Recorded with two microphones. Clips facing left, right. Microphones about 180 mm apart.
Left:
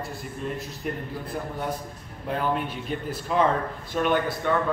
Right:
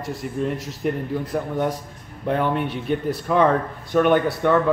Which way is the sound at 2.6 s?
60° right (ahead or behind).